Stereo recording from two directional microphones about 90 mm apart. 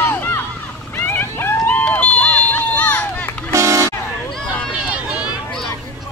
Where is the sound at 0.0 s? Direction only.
25° left (ahead or behind).